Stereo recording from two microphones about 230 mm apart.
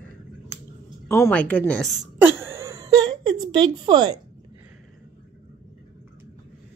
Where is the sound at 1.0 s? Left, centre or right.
Centre.